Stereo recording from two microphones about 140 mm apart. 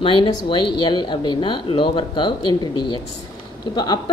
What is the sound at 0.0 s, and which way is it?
A woman's voice, 35° left (ahead or behind).